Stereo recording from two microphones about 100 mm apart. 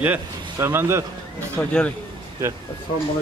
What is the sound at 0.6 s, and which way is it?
Speech, 25° right (ahead or behind).